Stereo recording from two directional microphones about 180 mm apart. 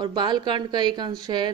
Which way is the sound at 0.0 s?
25° right (ahead or behind).